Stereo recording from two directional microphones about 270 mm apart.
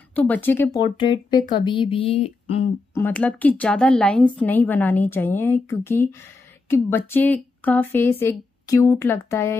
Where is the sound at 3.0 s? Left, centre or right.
Centre.